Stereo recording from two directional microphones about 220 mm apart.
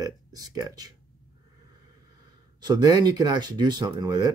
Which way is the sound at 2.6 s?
20° right (ahead or behind).